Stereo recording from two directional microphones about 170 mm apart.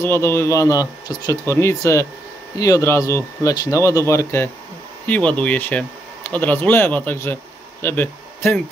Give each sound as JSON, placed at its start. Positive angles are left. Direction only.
{"t": 0.0, "sound": "speech", "side_deg": 15}